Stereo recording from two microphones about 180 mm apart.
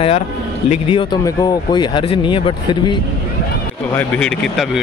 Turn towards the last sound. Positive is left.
turn(degrees=0)  # may be behind; listen again after turning